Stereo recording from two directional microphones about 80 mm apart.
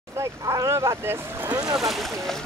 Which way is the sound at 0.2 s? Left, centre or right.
Right.